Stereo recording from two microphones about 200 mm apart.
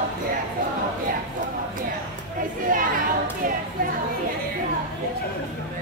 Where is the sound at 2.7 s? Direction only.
45° right (ahead or behind).